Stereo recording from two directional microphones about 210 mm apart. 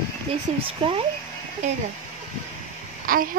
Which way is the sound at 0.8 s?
25° right (ahead or behind).